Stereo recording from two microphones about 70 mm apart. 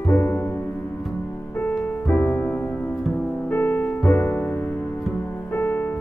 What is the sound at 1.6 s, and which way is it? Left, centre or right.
Music, left.